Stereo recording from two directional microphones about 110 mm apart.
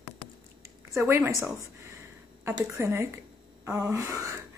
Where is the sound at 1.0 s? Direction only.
25° right (ahead or behind).